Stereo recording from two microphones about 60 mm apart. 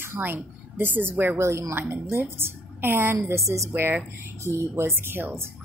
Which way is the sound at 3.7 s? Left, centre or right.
Right.